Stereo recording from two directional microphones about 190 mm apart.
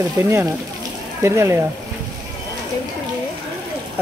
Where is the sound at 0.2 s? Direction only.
10° right (ahead or behind).